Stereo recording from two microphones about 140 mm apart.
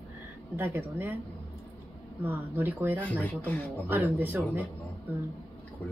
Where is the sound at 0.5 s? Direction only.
15° right (ahead or behind).